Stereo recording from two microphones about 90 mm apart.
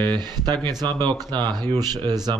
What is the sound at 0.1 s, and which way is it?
Speech, 55° right (ahead or behind).